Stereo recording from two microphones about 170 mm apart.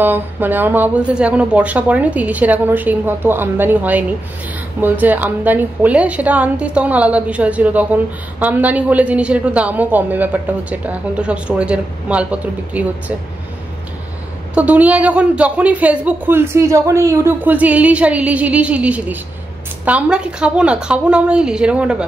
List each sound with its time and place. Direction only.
0.0 s a woman's voice: 10° right (ahead or behind)
14.5 s a woman's voice: 10° right (ahead or behind)